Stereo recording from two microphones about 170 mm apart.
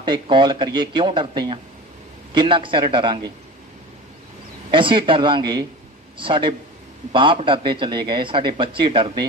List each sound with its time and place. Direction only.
0.0 s a man's voice: 25° right (ahead or behind)
4.6 s a man's voice: 30° right (ahead or behind)